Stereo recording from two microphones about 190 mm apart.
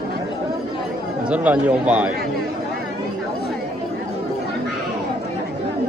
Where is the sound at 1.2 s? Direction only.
5° right (ahead or behind).